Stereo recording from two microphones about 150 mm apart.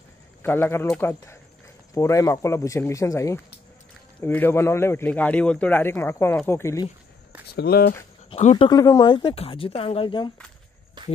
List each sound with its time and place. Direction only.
0.4 s a man's voice: 15° left (ahead or behind)
2.0 s a man's voice: 20° left (ahead or behind)
7.5 s speech: 90° left
8.3 s speech: 40° left (ahead or behind)
8.6 s speech: 20° left (ahead or behind)
11.0 s walk: 30° right (ahead or behind)